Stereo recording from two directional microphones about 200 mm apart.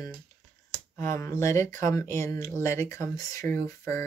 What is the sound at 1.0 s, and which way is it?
Speech, 15° left (ahead or behind).